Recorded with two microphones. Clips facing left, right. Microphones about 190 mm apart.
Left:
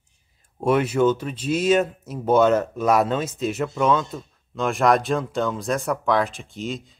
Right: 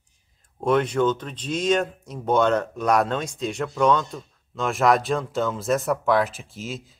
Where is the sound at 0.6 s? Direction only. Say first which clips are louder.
Left 2 dB; 10° left (ahead or behind).